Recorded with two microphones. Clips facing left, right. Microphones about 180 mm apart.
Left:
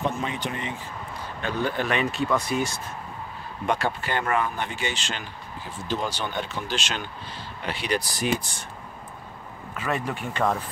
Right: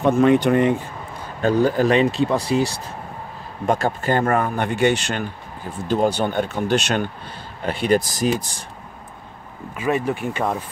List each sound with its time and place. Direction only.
0.0 s speech: 60° right (ahead or behind)
1.4 s speech: 40° right (ahead or behind)
3.6 s speech: 45° right (ahead or behind)
7.6 s speech: 50° right (ahead or behind)
9.8 s speech: 15° right (ahead or behind)